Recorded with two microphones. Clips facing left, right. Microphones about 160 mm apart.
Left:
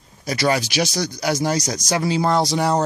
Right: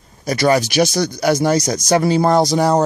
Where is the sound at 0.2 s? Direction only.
50° right (ahead or behind).